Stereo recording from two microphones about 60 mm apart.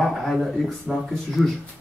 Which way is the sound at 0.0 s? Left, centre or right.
Centre.